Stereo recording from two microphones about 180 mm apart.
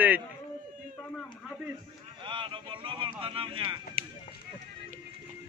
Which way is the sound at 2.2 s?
25° right (ahead or behind).